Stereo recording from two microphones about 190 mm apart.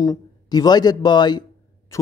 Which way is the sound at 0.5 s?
20° left (ahead or behind).